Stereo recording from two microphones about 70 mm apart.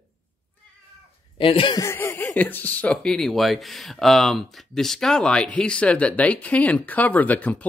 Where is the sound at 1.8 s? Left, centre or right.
Left.